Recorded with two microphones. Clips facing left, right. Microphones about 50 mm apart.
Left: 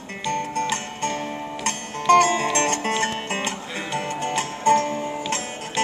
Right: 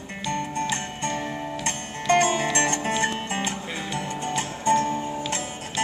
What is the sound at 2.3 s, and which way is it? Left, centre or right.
Music, left.